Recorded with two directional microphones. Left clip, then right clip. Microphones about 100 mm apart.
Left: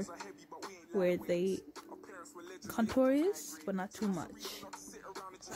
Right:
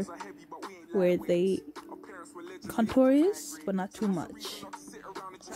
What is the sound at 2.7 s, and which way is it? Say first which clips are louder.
A woman's voice: right 6 dB; 35° right (ahead or behind).